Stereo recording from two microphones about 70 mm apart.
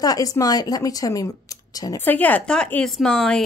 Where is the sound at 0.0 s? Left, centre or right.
Left.